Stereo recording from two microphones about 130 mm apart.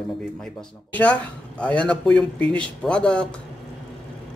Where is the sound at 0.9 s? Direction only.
10° left (ahead or behind).